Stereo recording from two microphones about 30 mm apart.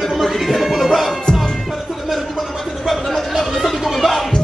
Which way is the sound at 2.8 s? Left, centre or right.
Centre.